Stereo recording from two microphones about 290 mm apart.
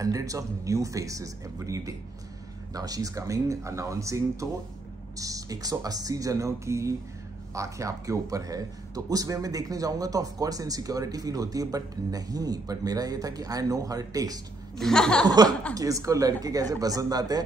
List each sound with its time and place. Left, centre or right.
0.0 s a man's voice: centre
14.8 s speech: centre
15.2 s a man's voice: centre